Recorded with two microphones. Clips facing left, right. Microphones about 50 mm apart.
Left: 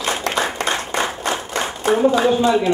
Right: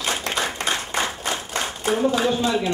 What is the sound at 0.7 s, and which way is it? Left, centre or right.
Clapping, centre.